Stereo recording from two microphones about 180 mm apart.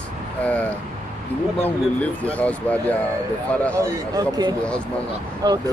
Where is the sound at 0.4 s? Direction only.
10° left (ahead or behind).